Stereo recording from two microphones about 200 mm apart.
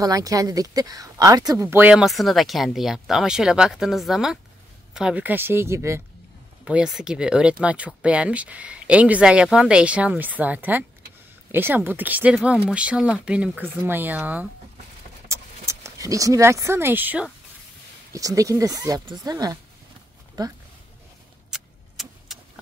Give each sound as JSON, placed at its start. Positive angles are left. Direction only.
{"t": 0.0, "sound": "speech", "side_deg": -15}
{"t": 15.2, "sound": "a sound", "side_deg": -15}
{"t": 18.1, "sound": "speech", "side_deg": -15}
{"t": 21.5, "sound": "clock", "side_deg": 0}